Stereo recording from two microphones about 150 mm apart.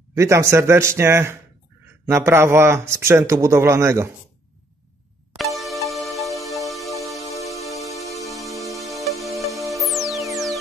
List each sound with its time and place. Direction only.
0.1 s speech: 20° right (ahead or behind)
5.4 s music: centre (ahead or behind)